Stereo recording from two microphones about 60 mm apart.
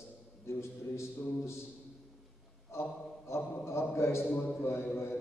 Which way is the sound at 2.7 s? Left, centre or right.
Left.